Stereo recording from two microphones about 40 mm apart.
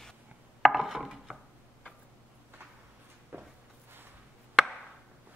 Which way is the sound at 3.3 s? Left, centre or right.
Right.